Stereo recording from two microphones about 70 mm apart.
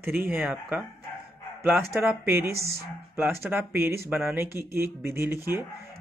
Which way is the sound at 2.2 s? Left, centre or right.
Right.